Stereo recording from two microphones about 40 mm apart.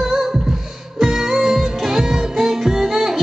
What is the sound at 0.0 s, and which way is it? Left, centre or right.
Music, centre.